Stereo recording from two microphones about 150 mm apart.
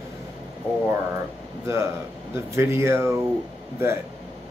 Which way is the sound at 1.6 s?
20° right (ahead or behind).